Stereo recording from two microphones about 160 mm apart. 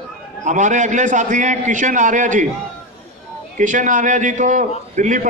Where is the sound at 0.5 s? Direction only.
50° right (ahead or behind).